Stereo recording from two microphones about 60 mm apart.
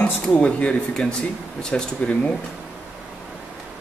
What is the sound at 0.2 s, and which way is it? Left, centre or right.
Speech, centre.